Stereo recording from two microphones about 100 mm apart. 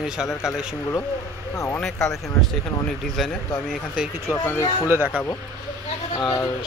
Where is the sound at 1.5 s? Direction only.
25° left (ahead or behind).